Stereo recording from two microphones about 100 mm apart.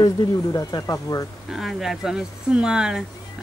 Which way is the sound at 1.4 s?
5° right (ahead or behind).